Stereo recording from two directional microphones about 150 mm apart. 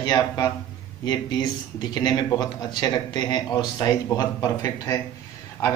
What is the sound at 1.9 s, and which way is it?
A man's voice, 30° left (ahead or behind).